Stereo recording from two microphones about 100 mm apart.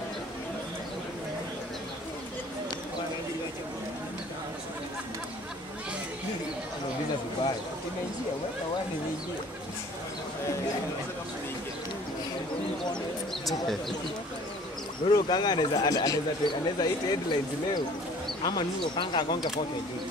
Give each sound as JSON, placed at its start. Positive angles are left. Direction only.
{"t": 13.5, "sound": "speech", "side_deg": 0}
{"t": 15.1, "sound": "speech", "side_deg": 45}